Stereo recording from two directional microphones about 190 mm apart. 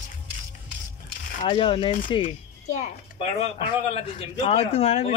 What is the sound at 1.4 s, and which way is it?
Speech, 30° left (ahead or behind).